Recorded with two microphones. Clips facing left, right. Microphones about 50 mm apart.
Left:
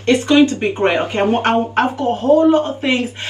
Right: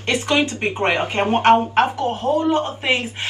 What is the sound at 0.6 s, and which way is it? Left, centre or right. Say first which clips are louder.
Speech: left 4 dB; centre.